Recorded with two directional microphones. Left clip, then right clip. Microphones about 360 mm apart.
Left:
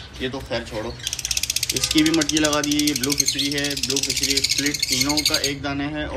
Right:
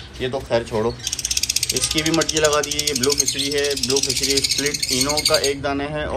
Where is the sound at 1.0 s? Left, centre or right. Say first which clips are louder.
Right 2 dB; centre.